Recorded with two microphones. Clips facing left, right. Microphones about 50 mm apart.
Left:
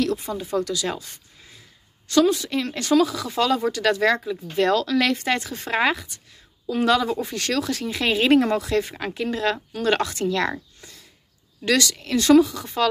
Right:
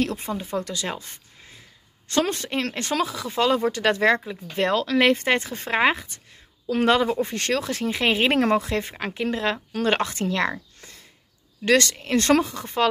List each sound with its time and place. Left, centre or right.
0.0 s speech: right
2.0 s speech: right
11.6 s speech: right